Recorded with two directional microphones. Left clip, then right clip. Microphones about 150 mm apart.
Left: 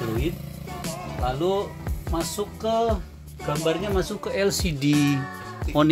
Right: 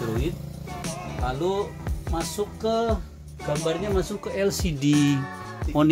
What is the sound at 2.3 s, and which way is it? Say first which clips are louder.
Speech: left 1 dB; 15° left (ahead or behind).